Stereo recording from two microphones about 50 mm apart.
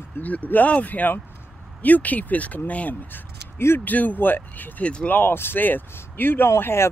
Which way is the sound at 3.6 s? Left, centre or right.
Left.